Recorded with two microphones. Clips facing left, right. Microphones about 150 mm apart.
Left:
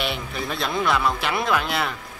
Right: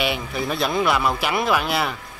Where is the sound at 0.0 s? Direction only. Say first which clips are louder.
Right 4 dB; 5° right (ahead or behind).